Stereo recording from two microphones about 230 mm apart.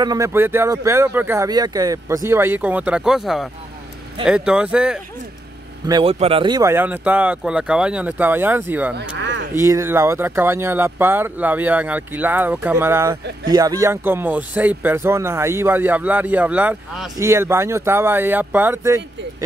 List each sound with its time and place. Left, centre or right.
0.0 s speech: centre
5.9 s speech: centre
8.9 s speech: right
9.6 s speech: centre